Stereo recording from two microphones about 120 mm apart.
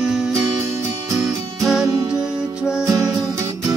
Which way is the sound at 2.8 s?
30° right (ahead or behind).